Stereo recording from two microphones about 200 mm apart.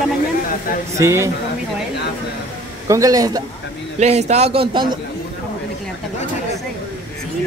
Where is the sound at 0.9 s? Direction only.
15° right (ahead or behind).